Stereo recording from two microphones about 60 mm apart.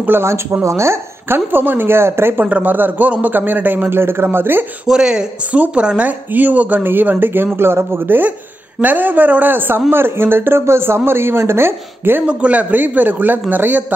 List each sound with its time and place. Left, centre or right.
0.2 s speech: right
1.5 s a man's voice: right
2.4 s a man's voice: right
4.8 s a woman's voice: centre; by 12.3 s right
12.3 s a woman's voice: right